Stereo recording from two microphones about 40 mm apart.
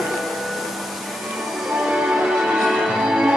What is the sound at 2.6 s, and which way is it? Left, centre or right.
Music, centre.